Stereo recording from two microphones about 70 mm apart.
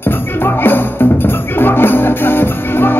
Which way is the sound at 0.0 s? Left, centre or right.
Left.